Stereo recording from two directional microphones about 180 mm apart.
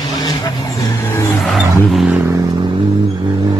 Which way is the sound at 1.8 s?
5° right (ahead or behind).